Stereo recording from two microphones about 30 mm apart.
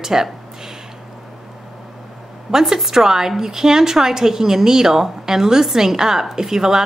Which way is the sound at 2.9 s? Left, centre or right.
Centre.